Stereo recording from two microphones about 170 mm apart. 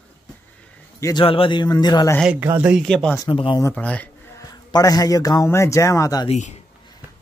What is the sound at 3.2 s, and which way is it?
Speech, 30° left (ahead or behind).